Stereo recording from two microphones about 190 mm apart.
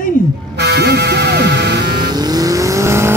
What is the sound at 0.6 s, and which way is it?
Speech, 60° right (ahead or behind).